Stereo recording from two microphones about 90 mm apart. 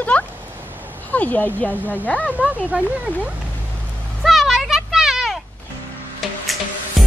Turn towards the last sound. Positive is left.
turn(degrees=0)  # may be behind; listen again after turning